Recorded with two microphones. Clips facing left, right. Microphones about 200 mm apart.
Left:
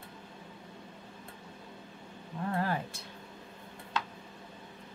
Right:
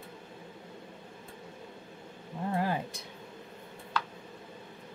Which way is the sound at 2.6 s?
15° right (ahead or behind).